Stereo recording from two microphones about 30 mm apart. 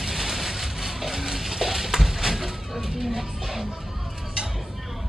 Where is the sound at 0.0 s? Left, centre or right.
Centre.